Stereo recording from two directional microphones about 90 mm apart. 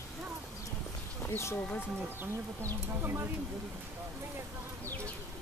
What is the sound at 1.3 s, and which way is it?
Speech, 30° left (ahead or behind).